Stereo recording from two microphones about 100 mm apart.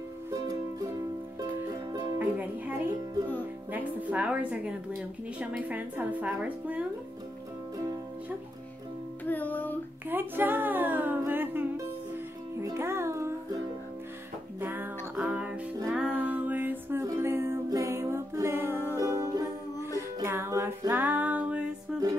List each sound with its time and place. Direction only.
1.7 s music: 40° right (ahead or behind)
2.1 s a woman's voice: 15° right (ahead or behind)
9.2 s music: 15° left (ahead or behind)
10.0 s a sound: 20° right (ahead or behind)
12.5 s music: 25° right (ahead or behind)
14.6 s music: 20° right (ahead or behind)
20.9 s music: 15° right (ahead or behind)